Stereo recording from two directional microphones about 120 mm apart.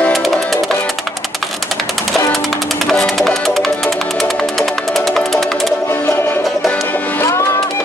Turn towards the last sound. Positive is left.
turn(degrees=25)  # may be behind; listen again after turning